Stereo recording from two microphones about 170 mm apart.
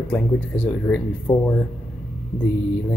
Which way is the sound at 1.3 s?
20° left (ahead or behind).